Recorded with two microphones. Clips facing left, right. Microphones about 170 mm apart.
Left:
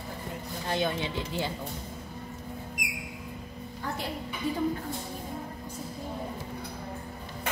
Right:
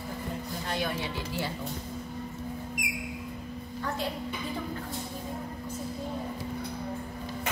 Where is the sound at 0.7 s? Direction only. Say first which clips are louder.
Left 4 dB; 25° left (ahead or behind).